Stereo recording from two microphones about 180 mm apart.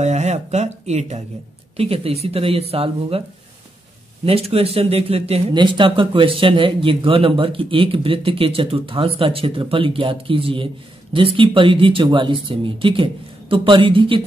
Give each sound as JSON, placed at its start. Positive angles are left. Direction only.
{"t": 0.0, "sound": "speech", "side_deg": -40}
{"t": 4.3, "sound": "speech", "side_deg": -35}